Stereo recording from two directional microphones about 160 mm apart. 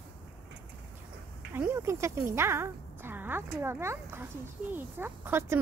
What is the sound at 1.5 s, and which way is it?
Speech, 15° right (ahead or behind).